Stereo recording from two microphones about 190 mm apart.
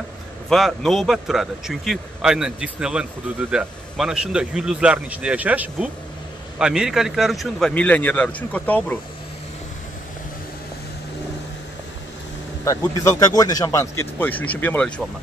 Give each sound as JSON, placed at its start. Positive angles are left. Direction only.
{"t": 0.5, "sound": "a man's voice", "side_deg": 0}
{"t": 12.6, "sound": "speech", "side_deg": 20}